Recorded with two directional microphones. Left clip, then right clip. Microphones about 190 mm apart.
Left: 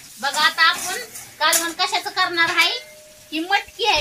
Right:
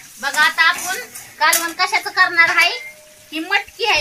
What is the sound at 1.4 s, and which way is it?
A child's voice, 15° left (ahead or behind).